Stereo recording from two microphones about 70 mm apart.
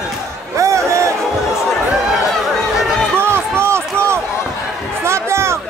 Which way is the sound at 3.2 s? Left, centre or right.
Right.